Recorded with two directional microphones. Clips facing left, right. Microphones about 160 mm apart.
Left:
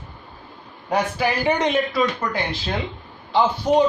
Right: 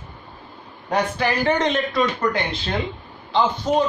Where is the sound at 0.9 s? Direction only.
10° left (ahead or behind).